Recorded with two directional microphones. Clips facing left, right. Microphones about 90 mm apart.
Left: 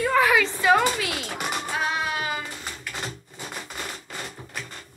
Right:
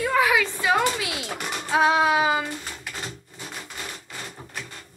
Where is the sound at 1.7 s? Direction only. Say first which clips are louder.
Right 11 dB; 90° right.